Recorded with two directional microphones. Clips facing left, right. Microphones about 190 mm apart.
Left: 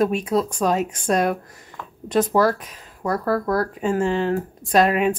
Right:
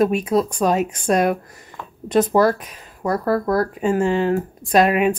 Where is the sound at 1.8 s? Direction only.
20° right (ahead or behind).